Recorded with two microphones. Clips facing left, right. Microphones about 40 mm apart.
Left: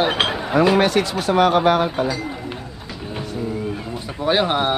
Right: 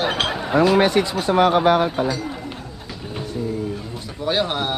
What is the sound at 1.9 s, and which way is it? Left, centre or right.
Speech, centre.